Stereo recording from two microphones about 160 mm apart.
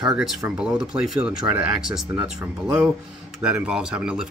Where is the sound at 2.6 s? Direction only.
15° right (ahead or behind).